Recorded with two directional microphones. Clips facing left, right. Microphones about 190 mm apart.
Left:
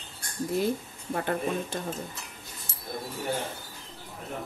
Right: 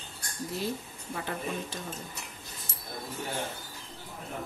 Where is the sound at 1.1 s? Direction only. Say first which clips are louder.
Left 6 dB; 50° left (ahead or behind).